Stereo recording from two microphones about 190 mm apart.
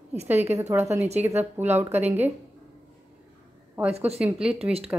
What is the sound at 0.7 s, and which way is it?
Speech, 15° right (ahead or behind).